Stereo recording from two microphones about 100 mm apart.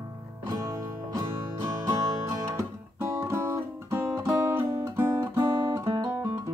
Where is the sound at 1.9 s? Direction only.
35° right (ahead or behind).